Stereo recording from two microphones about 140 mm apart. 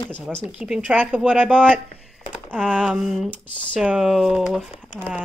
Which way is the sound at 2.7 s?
5° right (ahead or behind).